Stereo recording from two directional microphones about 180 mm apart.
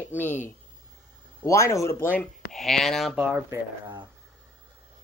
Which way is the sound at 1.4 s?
15° left (ahead or behind).